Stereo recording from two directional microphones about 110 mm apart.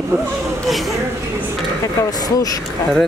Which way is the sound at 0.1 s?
25° right (ahead or behind).